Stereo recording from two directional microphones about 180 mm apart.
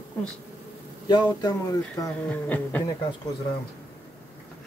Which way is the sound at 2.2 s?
10° left (ahead or behind).